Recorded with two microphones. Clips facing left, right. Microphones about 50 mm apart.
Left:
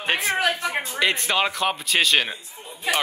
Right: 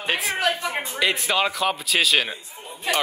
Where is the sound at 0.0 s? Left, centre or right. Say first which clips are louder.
Left 1 dB; centre.